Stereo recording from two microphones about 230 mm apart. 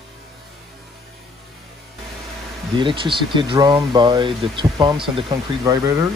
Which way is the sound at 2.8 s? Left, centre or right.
Right.